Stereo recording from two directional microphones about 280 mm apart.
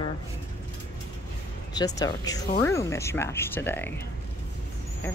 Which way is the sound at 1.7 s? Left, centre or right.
Centre.